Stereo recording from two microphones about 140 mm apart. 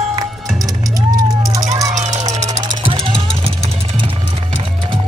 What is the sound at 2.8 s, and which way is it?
Music, 40° right (ahead or behind).